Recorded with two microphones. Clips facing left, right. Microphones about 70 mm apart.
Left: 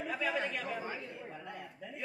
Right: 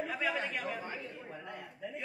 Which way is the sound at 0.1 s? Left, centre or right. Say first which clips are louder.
Even; centre.